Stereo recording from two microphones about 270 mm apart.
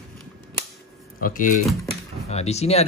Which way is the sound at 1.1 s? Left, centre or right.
Left.